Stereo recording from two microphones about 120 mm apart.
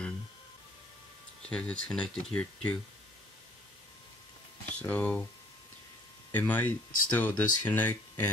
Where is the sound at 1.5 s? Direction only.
10° left (ahead or behind).